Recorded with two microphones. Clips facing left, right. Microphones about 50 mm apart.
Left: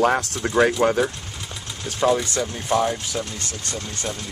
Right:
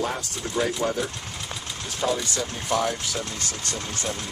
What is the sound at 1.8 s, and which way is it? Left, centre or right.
Speech, left.